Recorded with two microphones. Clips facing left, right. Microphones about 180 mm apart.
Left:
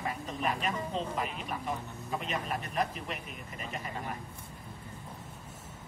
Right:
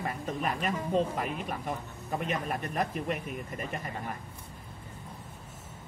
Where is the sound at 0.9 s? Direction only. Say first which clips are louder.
Right 5 dB; 50° right (ahead or behind).